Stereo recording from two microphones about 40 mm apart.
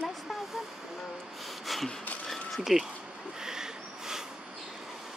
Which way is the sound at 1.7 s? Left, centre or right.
Centre.